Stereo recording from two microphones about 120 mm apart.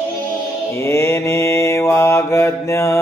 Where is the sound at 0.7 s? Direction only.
25° left (ahead or behind).